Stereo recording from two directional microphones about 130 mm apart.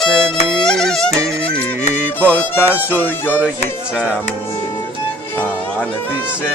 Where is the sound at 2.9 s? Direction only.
15° left (ahead or behind).